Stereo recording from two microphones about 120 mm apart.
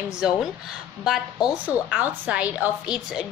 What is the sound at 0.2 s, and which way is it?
Speech, 5° right (ahead or behind).